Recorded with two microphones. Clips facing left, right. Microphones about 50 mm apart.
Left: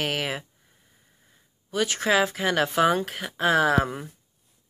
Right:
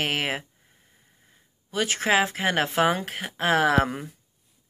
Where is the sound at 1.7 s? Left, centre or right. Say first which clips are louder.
Even; right.